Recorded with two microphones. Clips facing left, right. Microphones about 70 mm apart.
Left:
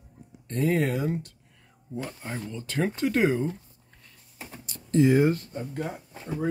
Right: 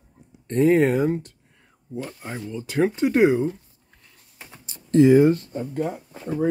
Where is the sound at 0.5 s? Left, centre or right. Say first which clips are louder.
Right 8 dB; right.